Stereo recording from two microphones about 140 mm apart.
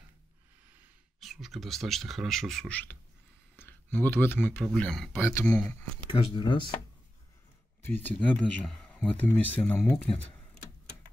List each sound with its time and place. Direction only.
1.2 s speech: centre (ahead or behind)
5.1 s speech: 15° left (ahead or behind)
6.0 s speech: 35° left (ahead or behind)
7.8 s speech: 15° left (ahead or behind)